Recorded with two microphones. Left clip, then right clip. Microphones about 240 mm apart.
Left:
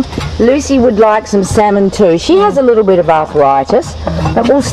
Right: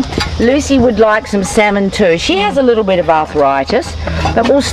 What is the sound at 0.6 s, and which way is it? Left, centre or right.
Speech, left.